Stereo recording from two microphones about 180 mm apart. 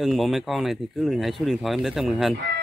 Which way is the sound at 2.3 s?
65° right (ahead or behind).